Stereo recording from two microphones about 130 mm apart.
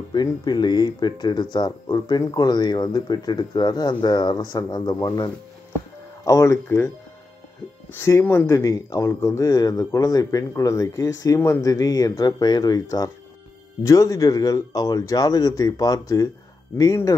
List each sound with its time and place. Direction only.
0.1 s speech: 35° left (ahead or behind)
7.9 s speech: 20° left (ahead or behind)